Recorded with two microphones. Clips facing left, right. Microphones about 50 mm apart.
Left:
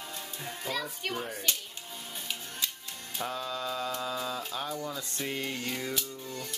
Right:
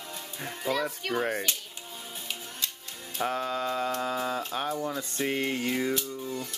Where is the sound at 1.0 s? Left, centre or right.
Centre.